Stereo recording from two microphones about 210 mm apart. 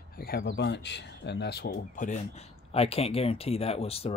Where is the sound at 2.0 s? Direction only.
30° left (ahead or behind).